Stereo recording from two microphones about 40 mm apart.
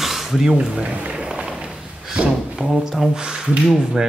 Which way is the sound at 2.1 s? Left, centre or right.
Right.